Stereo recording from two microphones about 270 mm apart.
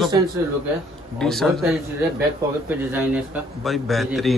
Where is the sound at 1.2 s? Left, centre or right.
Centre.